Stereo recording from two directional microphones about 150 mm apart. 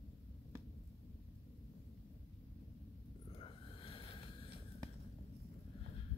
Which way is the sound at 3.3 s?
35° left (ahead or behind).